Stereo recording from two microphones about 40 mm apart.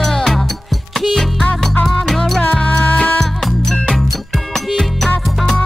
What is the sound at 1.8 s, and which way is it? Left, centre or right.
Music, centre.